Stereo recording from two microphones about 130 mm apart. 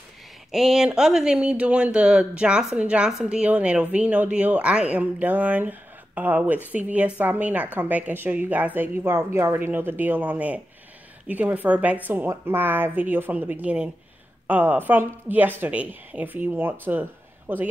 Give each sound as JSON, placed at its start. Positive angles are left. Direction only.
{"t": 0.5, "sound": "speech", "side_deg": 0}